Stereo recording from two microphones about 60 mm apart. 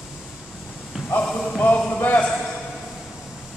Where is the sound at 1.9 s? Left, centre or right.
Left.